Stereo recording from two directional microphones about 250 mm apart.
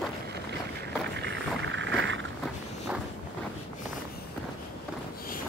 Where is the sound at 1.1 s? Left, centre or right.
Right.